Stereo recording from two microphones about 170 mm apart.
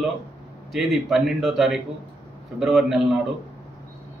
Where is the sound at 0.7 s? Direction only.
Centre (ahead or behind).